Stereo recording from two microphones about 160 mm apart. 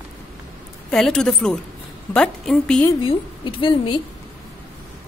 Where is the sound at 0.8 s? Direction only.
5° left (ahead or behind).